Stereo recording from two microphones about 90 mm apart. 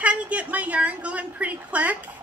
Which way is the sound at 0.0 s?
15° right (ahead or behind).